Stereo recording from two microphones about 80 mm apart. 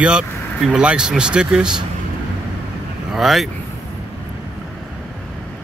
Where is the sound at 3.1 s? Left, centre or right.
Centre.